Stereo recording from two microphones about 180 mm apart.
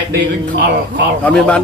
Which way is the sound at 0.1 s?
65° right (ahead or behind).